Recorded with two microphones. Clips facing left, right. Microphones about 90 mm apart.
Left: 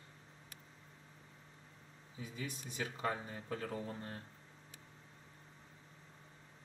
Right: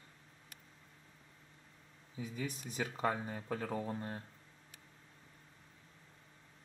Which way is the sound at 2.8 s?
20° right (ahead or behind).